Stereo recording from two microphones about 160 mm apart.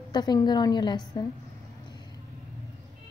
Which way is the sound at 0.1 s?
25° left (ahead or behind).